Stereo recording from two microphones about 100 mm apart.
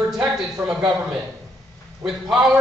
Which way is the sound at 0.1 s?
5° right (ahead or behind).